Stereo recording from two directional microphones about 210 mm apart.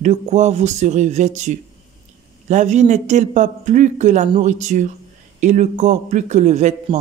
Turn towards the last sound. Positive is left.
turn(degrees=-35)  # may be behind; listen again after turning